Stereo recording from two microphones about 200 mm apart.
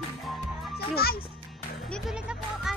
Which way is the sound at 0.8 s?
50° left (ahead or behind).